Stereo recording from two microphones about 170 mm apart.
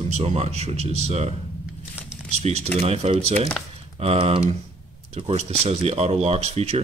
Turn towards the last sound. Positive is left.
turn(degrees=-40)  # may be behind; listen again after turning